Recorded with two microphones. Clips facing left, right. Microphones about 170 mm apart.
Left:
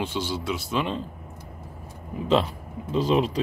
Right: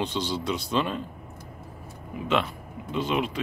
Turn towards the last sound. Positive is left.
turn(degrees=35)  # may be behind; listen again after turning